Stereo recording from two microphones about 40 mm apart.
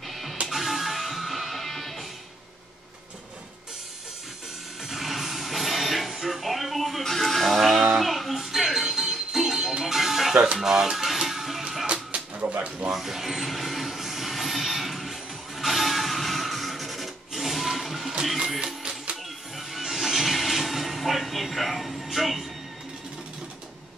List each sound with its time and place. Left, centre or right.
0.1 s music: centre
4.8 s music: centre
10.3 s music: centre
11.8 s music: right
12.9 s a sound: centre
18.8 s music: right
19.7 s television: centre